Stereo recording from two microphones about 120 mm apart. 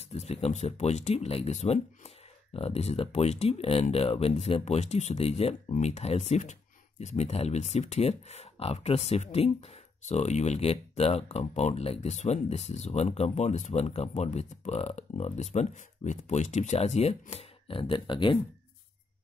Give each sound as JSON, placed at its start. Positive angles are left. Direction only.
{"t": 0.1, "sound": "speech", "side_deg": 65}